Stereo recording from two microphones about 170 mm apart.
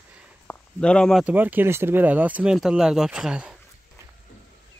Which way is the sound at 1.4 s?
10° right (ahead or behind).